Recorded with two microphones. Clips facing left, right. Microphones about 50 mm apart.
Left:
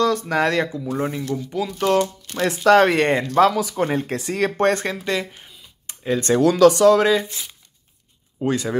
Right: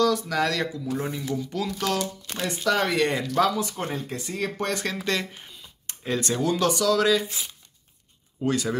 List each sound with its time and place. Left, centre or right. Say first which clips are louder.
0.0 s a sound: left 3 dB; left
0.3 s speech: left 5 dB; left
0.9 s speech: left 5 dB; centre
2.3 s speech: left 10 dB; left
3.0 s speech: left 6 dB; left
3.9 s speech: left 8 dB; left
4.2 s speech: left 8 dB; left
4.5 s speech: left 11 dB; left
5.0 s speech: left 3 dB; centre
5.9 s a sound: left 5 dB; centre
6.4 s speech: left 11 dB; left
7.0 s speech: left 4 dB; left
8.4 s speech: left 3 dB; left